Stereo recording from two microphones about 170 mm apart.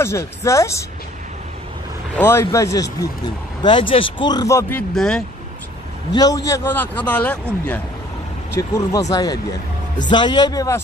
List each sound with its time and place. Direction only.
0.0 s a man's voice: 15° left (ahead or behind)
2.1 s speech: 15° left (ahead or behind)
3.6 s speech: 30° left (ahead or behind); by 4.8 s 15° left (ahead or behind)
4.9 s speech: 5° left (ahead or behind)
6.1 s a man's voice: 20° left (ahead or behind)